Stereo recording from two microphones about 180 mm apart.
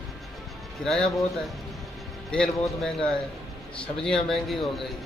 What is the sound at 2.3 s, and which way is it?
Speech, 5° left (ahead or behind).